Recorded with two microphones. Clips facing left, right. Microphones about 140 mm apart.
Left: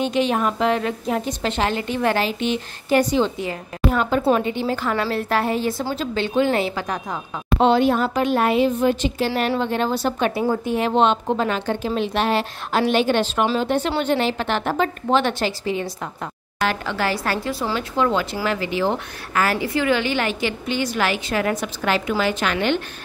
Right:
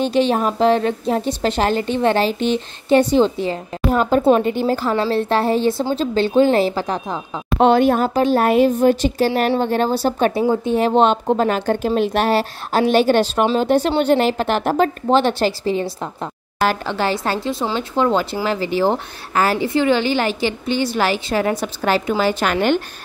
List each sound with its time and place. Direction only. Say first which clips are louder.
0.0 s a woman's voice: right 3 dB; 30° right (ahead or behind)
7.6 s a woman's voice: right 3 dB; 50° right (ahead or behind)
8.1 s a woman's voice: right 4 dB; 35° right (ahead or behind)
10.5 s a woman's voice: right 4 dB; 25° right (ahead or behind)
11.0 s a woman's voice: right 2 dB; 40° right (ahead or behind); by 17.8 s 20° right (ahead or behind)
17.9 s a woman's voice: right 3 dB; 30° right (ahead or behind)